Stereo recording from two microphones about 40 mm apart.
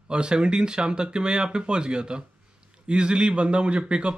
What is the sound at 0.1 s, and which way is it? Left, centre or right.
Speech, right.